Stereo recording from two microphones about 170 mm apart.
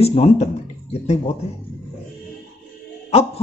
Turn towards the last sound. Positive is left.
turn(degrees=40)  # may be behind; listen again after turning